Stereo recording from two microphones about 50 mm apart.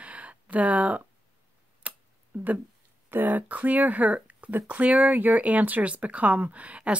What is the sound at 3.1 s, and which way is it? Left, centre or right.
Speech, right.